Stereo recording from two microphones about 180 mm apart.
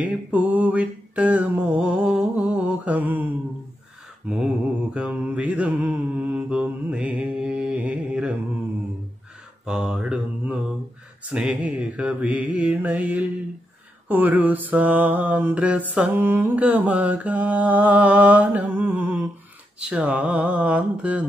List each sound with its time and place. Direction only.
0.0 s mantra: 10° right (ahead or behind)
4.9 s mantra: 5° right (ahead or behind)
9.7 s mantra: 5° right (ahead or behind)